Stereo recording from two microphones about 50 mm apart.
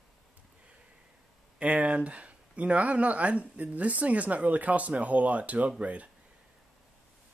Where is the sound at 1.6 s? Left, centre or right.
Right.